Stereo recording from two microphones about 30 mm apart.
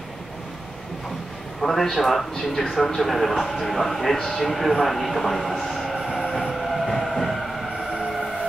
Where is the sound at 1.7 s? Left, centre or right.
Centre.